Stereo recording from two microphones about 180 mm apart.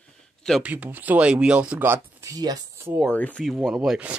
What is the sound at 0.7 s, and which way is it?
Speech, 10° right (ahead or behind).